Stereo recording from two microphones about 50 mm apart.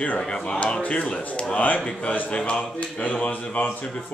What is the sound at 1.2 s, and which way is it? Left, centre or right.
Speech, left.